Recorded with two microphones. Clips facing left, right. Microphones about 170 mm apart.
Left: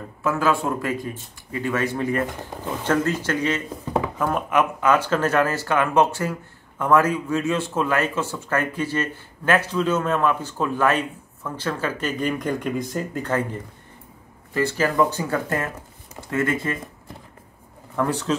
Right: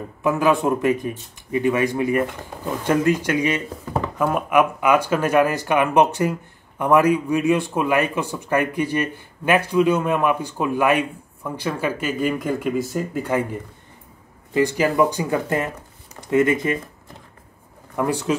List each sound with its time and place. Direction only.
0.2 s a man's voice: 15° right (ahead or behind)
17.9 s a man's voice: 10° right (ahead or behind)